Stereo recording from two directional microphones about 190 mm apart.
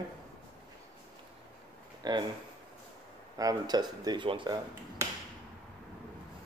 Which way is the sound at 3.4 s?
20° right (ahead or behind).